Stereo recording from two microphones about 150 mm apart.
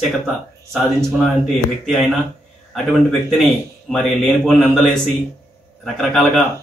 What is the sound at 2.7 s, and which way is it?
A man's voice, centre (ahead or behind).